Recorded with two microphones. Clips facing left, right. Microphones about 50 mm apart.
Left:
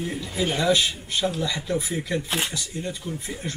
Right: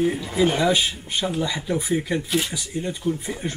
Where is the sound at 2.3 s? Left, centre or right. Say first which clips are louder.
Right 3 dB; left.